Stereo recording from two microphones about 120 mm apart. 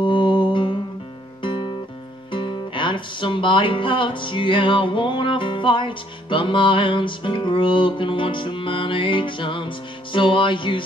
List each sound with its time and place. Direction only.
0.0 s music: 45° left (ahead or behind)